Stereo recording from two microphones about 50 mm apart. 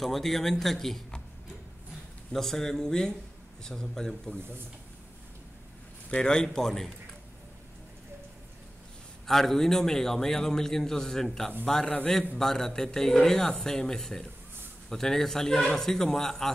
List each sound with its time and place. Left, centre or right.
0.0 s a man's voice: centre
2.3 s a man's voice: centre
6.0 s a man's voice: centre
9.2 s a man's voice: centre
12.4 s a man's voice: centre